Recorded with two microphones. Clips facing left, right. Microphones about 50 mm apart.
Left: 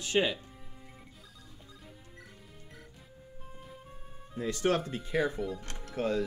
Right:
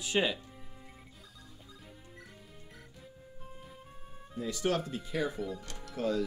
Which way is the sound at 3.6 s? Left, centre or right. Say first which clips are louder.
Left 2 dB; centre.